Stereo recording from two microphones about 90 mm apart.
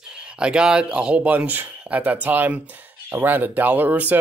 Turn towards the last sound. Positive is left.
turn(degrees=-20)  # may be behind; listen again after turning